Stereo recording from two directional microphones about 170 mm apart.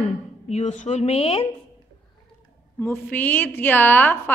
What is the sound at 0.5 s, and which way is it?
Speech, 45° left (ahead or behind).